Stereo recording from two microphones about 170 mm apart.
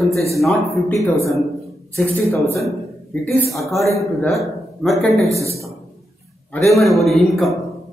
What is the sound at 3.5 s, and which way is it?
A man's voice, centre (ahead or behind).